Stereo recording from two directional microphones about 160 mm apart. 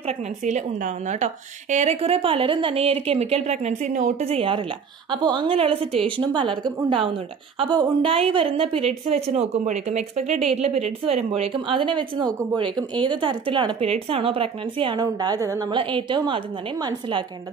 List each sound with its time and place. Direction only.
0.5 s a woman's voice: 50° right (ahead or behind); by 16.3 s 30° right (ahead or behind)